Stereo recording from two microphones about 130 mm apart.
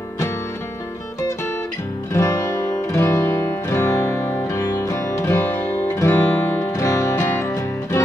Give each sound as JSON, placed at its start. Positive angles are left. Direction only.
{"t": 2.1, "sound": "music", "side_deg": 25}